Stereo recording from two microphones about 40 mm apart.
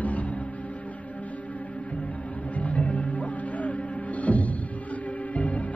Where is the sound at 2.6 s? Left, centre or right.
Left.